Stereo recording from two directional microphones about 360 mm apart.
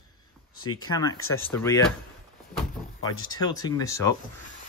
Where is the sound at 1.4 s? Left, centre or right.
Centre.